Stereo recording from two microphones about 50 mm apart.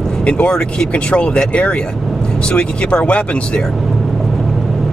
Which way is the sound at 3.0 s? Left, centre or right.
Left.